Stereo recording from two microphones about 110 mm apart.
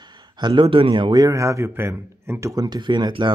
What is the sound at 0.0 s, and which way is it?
Speech, 40° right (ahead or behind).